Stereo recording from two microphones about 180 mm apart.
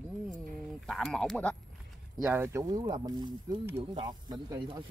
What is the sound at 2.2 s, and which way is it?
Speech, 10° right (ahead or behind).